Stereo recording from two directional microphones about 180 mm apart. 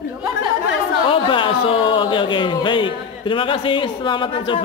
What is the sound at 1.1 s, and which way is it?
Speech, 30° left (ahead or behind).